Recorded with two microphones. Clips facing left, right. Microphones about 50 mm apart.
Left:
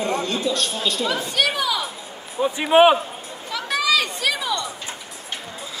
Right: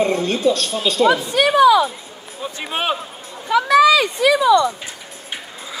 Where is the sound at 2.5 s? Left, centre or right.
Centre.